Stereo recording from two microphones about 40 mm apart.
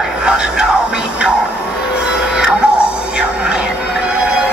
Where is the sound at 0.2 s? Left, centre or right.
Right.